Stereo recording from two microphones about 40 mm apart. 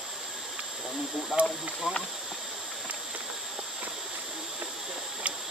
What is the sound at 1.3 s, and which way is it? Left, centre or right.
Speech, centre.